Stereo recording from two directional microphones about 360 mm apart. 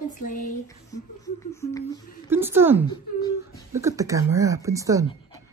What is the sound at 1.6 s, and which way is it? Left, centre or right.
Speech, centre.